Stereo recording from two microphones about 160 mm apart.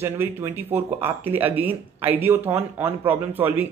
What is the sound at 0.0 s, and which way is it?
Speech, 15° right (ahead or behind).